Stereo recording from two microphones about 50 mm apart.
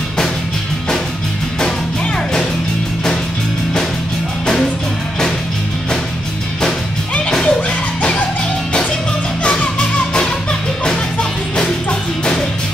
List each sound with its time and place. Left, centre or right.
7.2 s music: centre
9.4 s music: left